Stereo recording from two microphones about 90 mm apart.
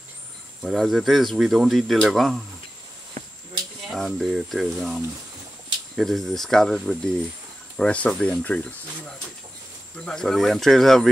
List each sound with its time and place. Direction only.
0.6 s speech: centre (ahead or behind)
3.9 s speech: centre (ahead or behind)